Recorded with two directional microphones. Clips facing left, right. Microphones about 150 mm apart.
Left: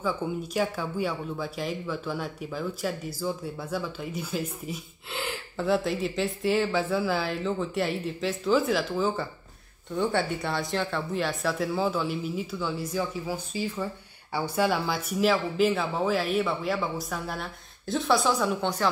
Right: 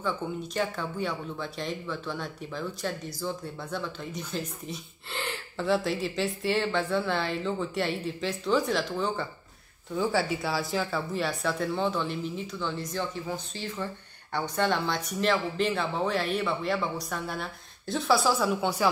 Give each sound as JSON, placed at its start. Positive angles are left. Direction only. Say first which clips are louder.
{"t": 0.0, "sound": "speech", "louder": "left 2 dB", "side_deg": 10}